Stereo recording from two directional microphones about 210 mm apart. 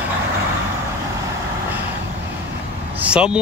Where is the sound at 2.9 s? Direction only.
5° right (ahead or behind).